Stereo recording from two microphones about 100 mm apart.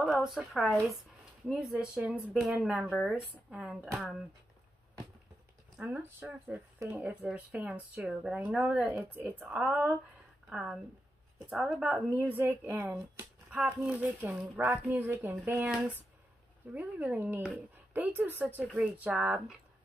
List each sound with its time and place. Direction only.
0.0 s speech: centre (ahead or behind)
5.8 s speech: 15° right (ahead or behind)